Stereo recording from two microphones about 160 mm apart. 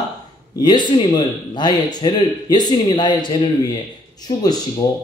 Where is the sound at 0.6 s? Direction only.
30° left (ahead or behind).